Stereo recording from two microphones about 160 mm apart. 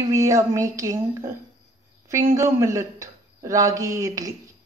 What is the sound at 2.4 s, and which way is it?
Speech, 20° right (ahead or behind).